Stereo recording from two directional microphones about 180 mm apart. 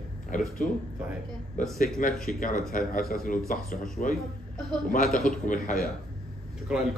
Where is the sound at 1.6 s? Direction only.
45° left (ahead or behind).